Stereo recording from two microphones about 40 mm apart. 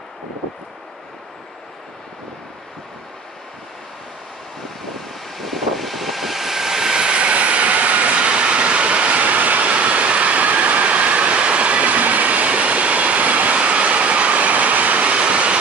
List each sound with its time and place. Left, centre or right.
5.4 s vehicle: centre; by 15.5 s right